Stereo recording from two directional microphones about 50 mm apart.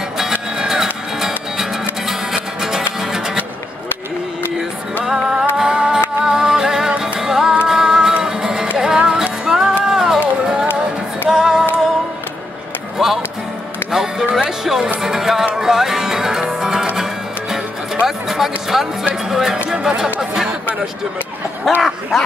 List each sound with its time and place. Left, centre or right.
0.2 s music: centre
5.0 s music: centre
11.2 s music: centre
13.0 s music: centre
19.3 s speech: centre
20.2 s chatter: centre
21.7 s a sound: centre